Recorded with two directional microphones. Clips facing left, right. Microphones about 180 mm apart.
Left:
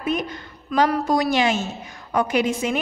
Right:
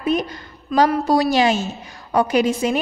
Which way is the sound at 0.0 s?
35° right (ahead or behind).